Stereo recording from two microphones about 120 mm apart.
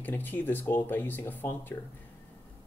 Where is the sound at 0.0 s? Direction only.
15° left (ahead or behind).